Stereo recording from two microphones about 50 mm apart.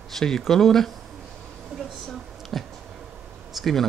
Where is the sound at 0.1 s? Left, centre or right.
Centre.